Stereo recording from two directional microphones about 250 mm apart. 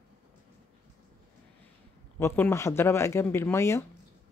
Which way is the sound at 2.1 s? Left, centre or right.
Centre.